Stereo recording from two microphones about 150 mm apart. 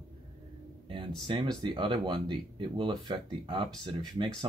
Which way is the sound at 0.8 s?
35° right (ahead or behind).